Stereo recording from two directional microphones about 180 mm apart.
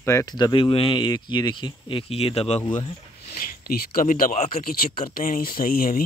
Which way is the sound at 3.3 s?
55° left (ahead or behind).